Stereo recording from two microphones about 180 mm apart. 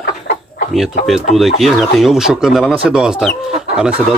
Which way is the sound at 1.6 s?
Centre (ahead or behind).